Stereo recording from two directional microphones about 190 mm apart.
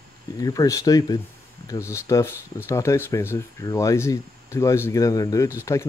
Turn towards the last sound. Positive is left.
turn(degrees=15)  # may be behind; listen again after turning